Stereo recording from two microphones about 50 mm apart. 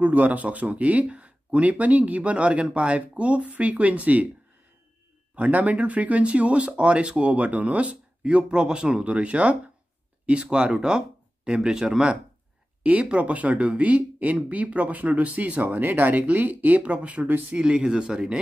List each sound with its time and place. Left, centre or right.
0.0 s speech: right
5.3 s speech: right; by 12.2 s centre
13.0 s speech: right